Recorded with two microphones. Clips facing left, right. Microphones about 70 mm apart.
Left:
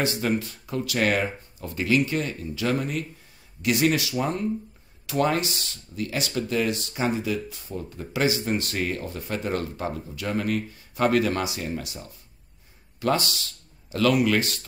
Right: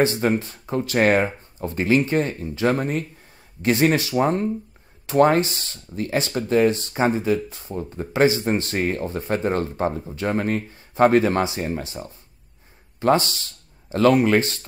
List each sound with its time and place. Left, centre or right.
0.0 s speech: right